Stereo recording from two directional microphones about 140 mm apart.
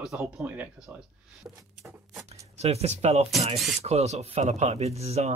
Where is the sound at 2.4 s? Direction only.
50° right (ahead or behind).